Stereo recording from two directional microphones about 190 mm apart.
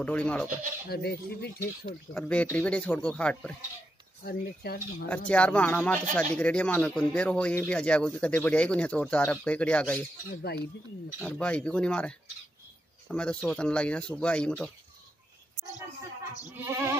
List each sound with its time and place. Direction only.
0.0 s speech: 5° left (ahead or behind)
0.8 s speech: 55° left (ahead or behind)
2.1 s speech: 5° left (ahead or behind)
4.2 s speech: 55° left (ahead or behind)
5.0 s speech: 5° left (ahead or behind)
11.1 s speech: 5° left (ahead or behind)
16.6 s goat: 15° right (ahead or behind)